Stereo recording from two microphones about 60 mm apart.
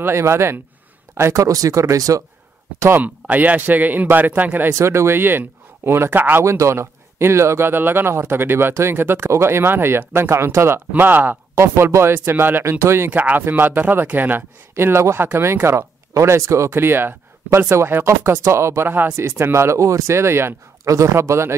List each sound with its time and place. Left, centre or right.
0.0 s speech: right
2.9 s speech: right
4.7 s speech: right
6.4 s speech: right
10.9 s speech: right
11.6 s speech: right
12.6 s speech: right
13.1 s speech: right
18.9 s speech: right
19.1 s speech: right
20.8 s speech: right